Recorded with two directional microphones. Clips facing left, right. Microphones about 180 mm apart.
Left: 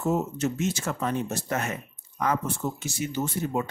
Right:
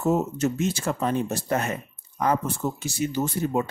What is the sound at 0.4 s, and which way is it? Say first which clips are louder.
Speech: right 3 dB; 35° right (ahead or behind).